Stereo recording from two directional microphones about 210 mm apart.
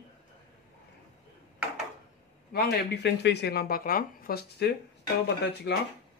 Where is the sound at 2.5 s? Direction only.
50° left (ahead or behind).